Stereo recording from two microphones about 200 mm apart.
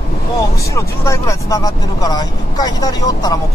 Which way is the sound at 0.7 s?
15° left (ahead or behind).